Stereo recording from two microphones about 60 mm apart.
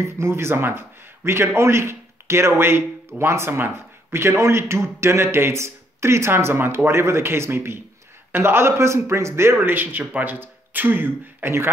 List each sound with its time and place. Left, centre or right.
0.0 s speech: right
9.6 s speech: right